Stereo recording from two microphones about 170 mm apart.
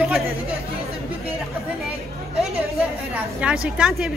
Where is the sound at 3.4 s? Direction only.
5° right (ahead or behind).